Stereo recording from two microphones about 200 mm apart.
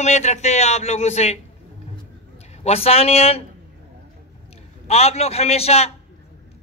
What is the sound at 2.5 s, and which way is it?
Speech, 30° left (ahead or behind).